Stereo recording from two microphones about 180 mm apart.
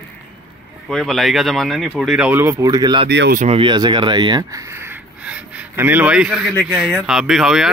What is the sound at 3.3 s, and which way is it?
Speech, 35° right (ahead or behind).